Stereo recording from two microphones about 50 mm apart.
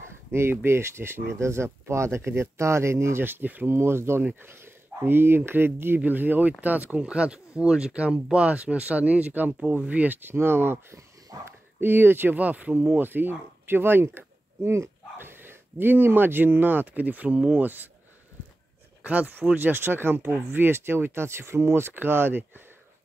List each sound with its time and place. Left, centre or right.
0.3 s speech: right
3.3 s speech: right
3.6 s speech: right
5.9 s speech: right
12.4 s speech: right
15.1 s speech: right
19.0 s speech: right